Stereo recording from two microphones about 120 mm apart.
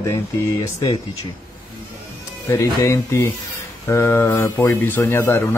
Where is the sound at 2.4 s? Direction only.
25° left (ahead or behind).